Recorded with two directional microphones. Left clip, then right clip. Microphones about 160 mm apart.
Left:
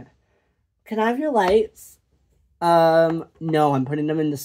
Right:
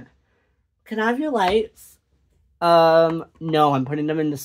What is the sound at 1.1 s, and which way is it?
Speech, 20° left (ahead or behind).